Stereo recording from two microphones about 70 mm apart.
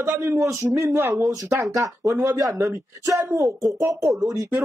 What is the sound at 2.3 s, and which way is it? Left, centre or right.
A woman's voice, right.